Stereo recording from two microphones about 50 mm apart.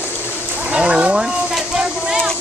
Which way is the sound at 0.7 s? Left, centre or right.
Right.